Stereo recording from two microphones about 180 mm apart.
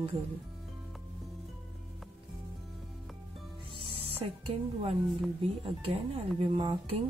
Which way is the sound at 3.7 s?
30° right (ahead or behind).